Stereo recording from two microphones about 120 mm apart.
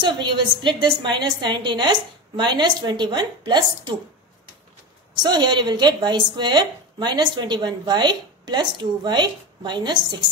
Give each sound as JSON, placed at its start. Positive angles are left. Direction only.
{"t": 0.0, "sound": "speech", "side_deg": -40}
{"t": 5.1, "sound": "speech", "side_deg": -35}